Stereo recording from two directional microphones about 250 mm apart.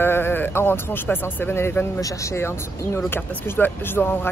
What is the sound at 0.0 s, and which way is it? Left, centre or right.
Speech, centre.